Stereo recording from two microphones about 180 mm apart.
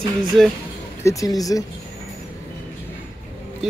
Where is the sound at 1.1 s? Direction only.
20° left (ahead or behind).